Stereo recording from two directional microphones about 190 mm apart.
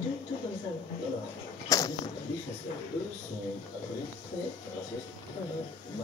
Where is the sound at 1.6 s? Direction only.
20° left (ahead or behind).